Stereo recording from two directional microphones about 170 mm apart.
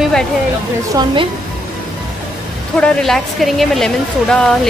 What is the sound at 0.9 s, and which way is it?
Speech, 25° right (ahead or behind).